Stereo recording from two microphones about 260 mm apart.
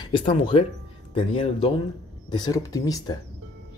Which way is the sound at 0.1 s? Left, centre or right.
Centre.